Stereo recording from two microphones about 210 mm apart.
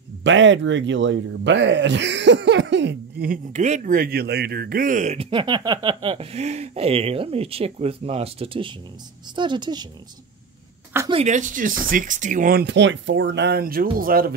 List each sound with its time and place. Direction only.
0.2 s speech: 60° right (ahead or behind); by 9.8 s 20° right (ahead or behind)
11.1 s speech: 30° right (ahead or behind)